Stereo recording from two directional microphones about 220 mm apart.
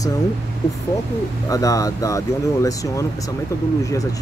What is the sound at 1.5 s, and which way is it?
Speech, 15° left (ahead or behind).